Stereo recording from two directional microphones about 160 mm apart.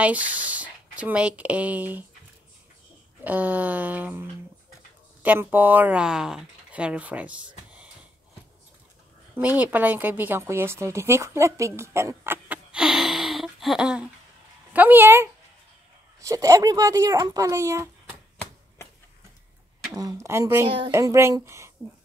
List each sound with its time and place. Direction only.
0.0 s speech: 10° right (ahead or behind)
3.3 s speech: 10° right (ahead or behind)
9.6 s speech: 10° right (ahead or behind)
19.9 s speech: 20° right (ahead or behind)